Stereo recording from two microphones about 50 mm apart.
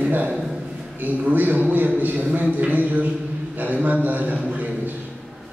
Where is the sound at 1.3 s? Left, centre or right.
Right.